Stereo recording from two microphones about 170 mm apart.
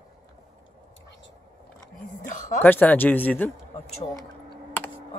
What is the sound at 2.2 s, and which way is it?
Speech, 50° left (ahead or behind).